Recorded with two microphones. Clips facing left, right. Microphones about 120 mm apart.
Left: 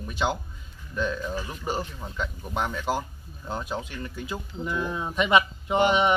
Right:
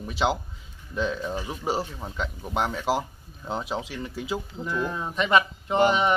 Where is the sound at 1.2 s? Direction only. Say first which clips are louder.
Right 2 dB; 25° right (ahead or behind).